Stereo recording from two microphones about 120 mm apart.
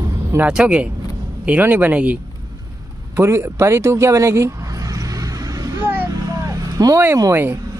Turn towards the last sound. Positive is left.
turn(degrees=-20)  # may be behind; listen again after turning